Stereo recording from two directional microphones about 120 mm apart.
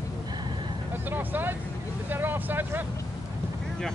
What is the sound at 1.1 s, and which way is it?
Vehicle, 15° right (ahead or behind).